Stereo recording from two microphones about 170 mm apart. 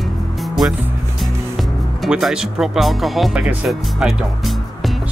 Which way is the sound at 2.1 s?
5° right (ahead or behind).